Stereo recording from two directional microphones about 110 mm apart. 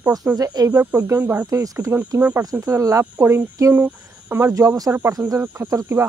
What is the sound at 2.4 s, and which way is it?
Speech, 35° right (ahead or behind).